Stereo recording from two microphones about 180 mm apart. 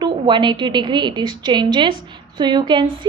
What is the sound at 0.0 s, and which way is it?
A woman's voice, 25° right (ahead or behind).